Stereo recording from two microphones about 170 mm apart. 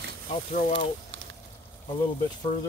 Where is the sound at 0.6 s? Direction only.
45° left (ahead or behind).